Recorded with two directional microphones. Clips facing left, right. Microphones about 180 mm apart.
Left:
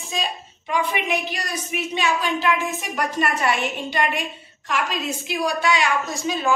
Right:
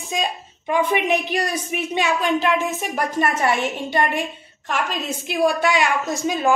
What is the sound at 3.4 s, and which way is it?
Speech, 25° right (ahead or behind).